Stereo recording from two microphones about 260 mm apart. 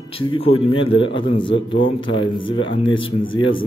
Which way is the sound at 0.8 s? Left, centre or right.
Left.